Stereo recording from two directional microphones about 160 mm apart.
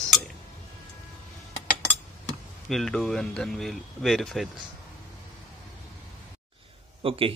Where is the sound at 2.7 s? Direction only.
Centre (ahead or behind).